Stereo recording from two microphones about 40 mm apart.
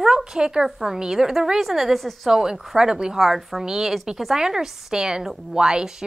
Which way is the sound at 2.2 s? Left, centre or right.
Centre.